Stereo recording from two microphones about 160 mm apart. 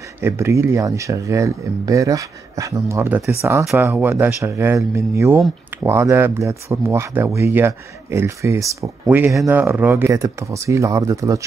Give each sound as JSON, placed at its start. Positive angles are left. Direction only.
{"t": 0.2, "sound": "speech", "side_deg": -15}